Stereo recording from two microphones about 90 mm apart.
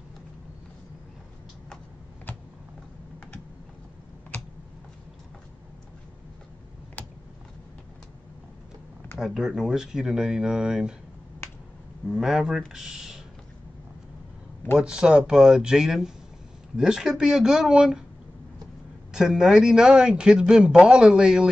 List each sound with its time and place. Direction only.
7.0 s computer keyboard: 20° left (ahead or behind)
9.2 s a man's voice: 5° right (ahead or behind)
12.1 s speech: 5° right (ahead or behind)
14.8 s a man's voice: 10° right (ahead or behind)
19.1 s a man's voice: 5° right (ahead or behind)